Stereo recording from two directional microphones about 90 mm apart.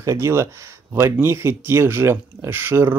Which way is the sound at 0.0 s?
35° right (ahead or behind).